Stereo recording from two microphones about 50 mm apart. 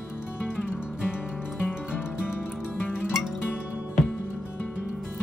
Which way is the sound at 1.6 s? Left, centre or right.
Left.